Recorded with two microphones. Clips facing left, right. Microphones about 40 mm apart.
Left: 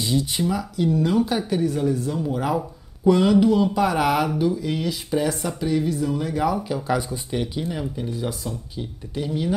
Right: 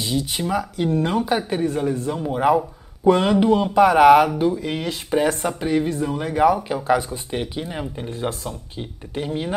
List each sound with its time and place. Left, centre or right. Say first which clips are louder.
0.0 s speech: left 1 dB; right